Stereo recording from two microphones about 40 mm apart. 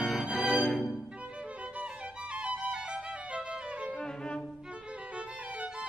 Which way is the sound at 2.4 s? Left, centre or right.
Right.